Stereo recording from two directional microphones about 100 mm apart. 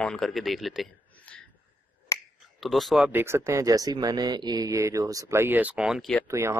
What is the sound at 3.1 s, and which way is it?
Speech, 25° right (ahead or behind).